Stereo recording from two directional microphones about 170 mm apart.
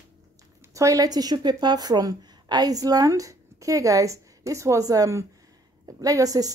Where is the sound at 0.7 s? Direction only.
20° right (ahead or behind).